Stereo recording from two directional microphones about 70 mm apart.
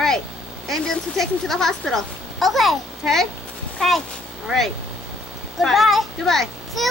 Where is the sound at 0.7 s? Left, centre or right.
Centre.